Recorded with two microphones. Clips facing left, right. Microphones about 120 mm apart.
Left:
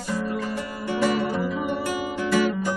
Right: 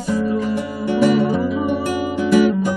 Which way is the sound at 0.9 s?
15° right (ahead or behind).